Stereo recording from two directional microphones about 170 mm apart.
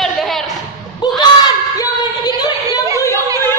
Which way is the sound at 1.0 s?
25° left (ahead or behind).